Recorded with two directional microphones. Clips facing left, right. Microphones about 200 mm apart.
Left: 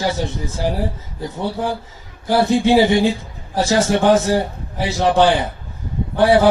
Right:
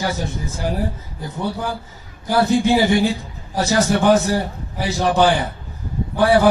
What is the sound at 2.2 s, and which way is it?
A man's voice, 25° left (ahead or behind).